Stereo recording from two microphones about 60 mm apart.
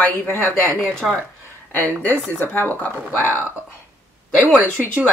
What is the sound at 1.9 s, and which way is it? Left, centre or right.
Speech, left.